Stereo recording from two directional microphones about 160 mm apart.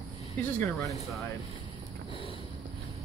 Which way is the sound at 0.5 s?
Centre (ahead or behind).